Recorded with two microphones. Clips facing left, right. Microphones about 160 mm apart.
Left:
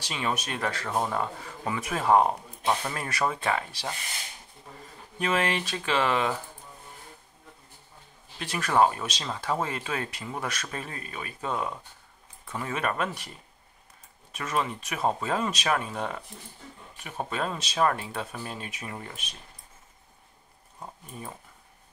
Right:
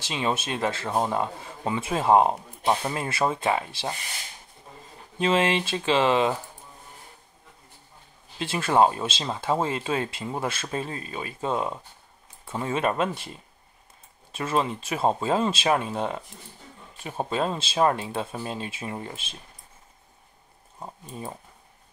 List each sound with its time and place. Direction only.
0.0 s speech: 25° right (ahead or behind)
5.2 s speech: 25° right (ahead or behind)
8.4 s speech: 25° right (ahead or behind)
14.3 s speech: 30° right (ahead or behind)
20.8 s speech: 30° right (ahead or behind)